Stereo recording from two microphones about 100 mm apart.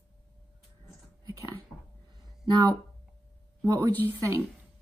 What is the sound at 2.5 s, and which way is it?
Speech, 45° right (ahead or behind).